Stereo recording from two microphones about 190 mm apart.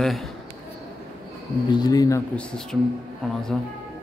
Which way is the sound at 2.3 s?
5° left (ahead or behind).